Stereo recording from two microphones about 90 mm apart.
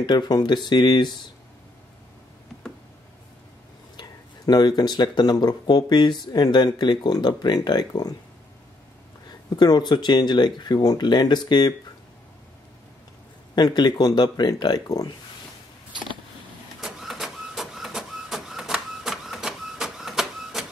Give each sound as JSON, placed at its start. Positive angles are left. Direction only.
{"t": 0.0, "sound": "speech", "side_deg": 50}
{"t": 3.9, "sound": "speech", "side_deg": 50}
{"t": 9.6, "sound": "speech", "side_deg": 50}
{"t": 13.6, "sound": "speech", "side_deg": 50}
{"t": 16.8, "sound": "printer", "side_deg": 0}